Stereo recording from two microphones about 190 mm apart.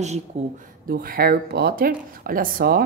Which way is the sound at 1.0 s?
50° right (ahead or behind).